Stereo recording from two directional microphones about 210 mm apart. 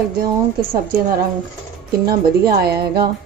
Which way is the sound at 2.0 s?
45° right (ahead or behind).